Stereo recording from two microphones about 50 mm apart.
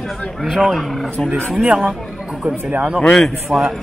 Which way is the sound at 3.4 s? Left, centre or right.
Centre.